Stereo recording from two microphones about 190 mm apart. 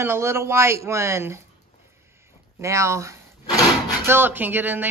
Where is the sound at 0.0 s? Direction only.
10° right (ahead or behind).